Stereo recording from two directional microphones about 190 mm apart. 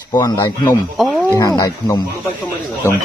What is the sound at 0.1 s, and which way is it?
Speech, 20° left (ahead or behind).